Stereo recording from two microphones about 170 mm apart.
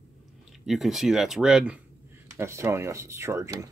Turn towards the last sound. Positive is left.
turn(degrees=-15)  # may be behind; listen again after turning